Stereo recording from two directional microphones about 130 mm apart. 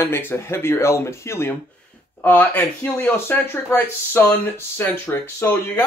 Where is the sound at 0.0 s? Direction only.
15° left (ahead or behind).